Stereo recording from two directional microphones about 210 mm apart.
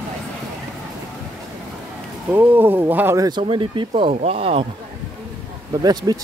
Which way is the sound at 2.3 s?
10° right (ahead or behind).